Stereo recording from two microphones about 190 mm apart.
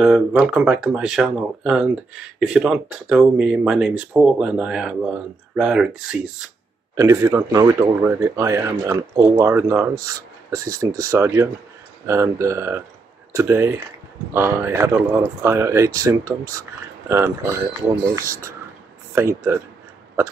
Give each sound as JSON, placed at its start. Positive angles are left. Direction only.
{"t": 0.0, "sound": "speech", "side_deg": -5}
{"t": 7.0, "sound": "speech", "side_deg": -15}